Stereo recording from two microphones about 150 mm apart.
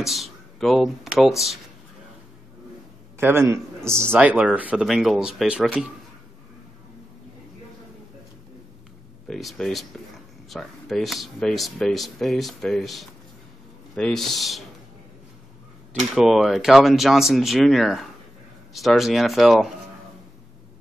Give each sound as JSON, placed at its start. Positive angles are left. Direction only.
{"t": 0.0, "sound": "speech", "side_deg": 0}
{"t": 3.2, "sound": "a man's voice", "side_deg": -15}
{"t": 9.3, "sound": "speech", "side_deg": 0}
{"t": 15.9, "sound": "speech", "side_deg": 0}